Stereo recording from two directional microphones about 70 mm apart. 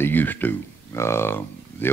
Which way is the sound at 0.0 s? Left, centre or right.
Left.